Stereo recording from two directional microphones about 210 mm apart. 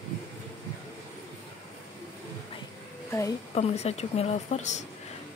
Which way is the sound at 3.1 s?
15° left (ahead or behind).